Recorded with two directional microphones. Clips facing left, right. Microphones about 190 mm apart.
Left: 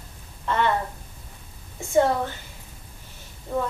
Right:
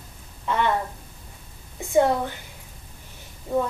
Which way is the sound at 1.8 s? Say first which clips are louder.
Right 1 dB; 15° right (ahead or behind).